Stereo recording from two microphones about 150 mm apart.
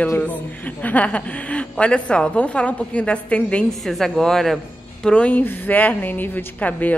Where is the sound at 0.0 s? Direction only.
10° left (ahead or behind).